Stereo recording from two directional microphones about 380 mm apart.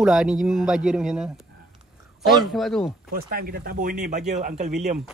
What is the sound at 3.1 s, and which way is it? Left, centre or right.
Speech, right.